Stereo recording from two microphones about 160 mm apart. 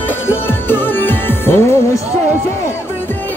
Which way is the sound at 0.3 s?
15° left (ahead or behind).